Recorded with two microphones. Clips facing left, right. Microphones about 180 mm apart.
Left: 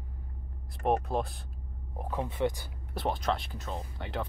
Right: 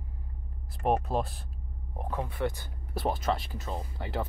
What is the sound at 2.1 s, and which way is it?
Speech, 20° left (ahead or behind).